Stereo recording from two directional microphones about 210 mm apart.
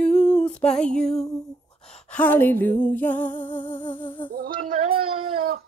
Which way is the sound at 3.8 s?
25° left (ahead or behind).